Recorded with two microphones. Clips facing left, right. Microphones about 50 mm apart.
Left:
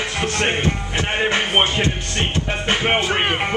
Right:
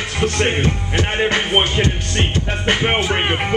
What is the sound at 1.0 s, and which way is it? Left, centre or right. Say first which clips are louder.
Music: right 2 dB; left.